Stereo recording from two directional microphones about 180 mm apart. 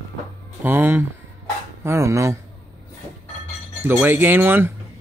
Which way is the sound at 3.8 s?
10° right (ahead or behind).